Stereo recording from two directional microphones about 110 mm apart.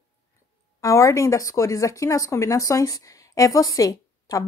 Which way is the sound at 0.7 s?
25° left (ahead or behind).